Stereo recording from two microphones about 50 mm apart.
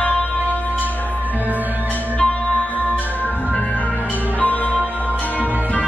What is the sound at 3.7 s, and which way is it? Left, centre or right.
Music, left.